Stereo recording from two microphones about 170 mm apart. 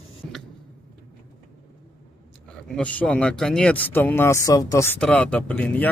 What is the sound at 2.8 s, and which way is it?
Speech, 5° left (ahead or behind).